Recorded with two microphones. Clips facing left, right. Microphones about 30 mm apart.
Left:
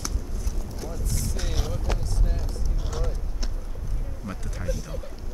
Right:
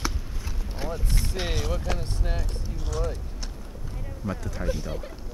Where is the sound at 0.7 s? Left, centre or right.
Right.